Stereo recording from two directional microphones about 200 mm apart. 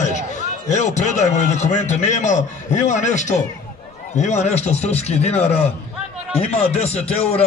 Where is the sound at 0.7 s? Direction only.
35° left (ahead or behind).